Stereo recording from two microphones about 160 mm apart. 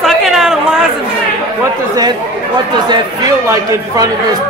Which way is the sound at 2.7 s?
25° right (ahead or behind).